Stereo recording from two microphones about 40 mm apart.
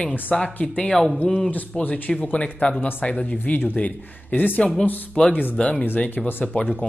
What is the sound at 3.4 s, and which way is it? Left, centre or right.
Speech, left.